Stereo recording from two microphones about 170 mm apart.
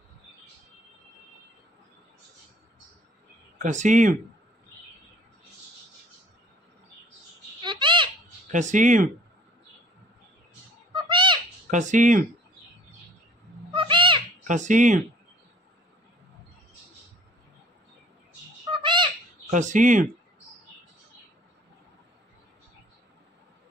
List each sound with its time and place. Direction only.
3.6 s speech: 45° right (ahead or behind)
7.6 s a sound: 30° right (ahead or behind)
8.5 s speech: 45° right (ahead or behind)
10.9 s bird: 30° right (ahead or behind)
11.7 s speech: 45° right (ahead or behind)
13.7 s cat: 30° right (ahead or behind)
14.5 s speech: 45° right (ahead or behind)
18.7 s owl: 25° right (ahead or behind)
19.5 s speech: 50° right (ahead or behind)